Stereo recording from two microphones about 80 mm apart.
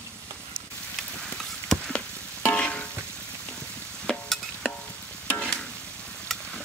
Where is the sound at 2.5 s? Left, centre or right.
Centre.